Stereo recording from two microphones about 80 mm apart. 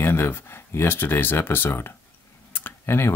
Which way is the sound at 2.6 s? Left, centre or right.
Left.